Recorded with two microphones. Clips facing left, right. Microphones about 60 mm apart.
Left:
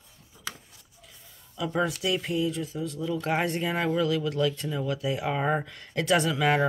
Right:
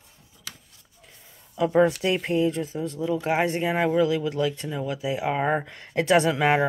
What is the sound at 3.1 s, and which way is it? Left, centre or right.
Speech, centre.